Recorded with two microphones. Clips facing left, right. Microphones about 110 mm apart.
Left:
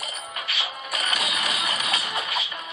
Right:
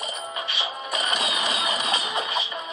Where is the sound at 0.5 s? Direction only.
30° right (ahead or behind).